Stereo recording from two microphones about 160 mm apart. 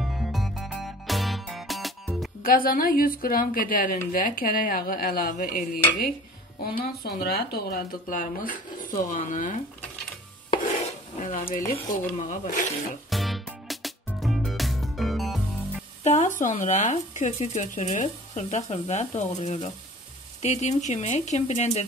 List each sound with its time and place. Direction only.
0.0 s music: centre (ahead or behind)
2.4 s speech: 65° left (ahead or behind)
6.6 s speech: 75° left (ahead or behind); by 9.6 s 55° left (ahead or behind)
10.5 s stir: 45° left (ahead or behind)
11.9 s speech: 55° left (ahead or behind)
13.1 s music: centre (ahead or behind)
16.0 s speech: 45° left (ahead or behind)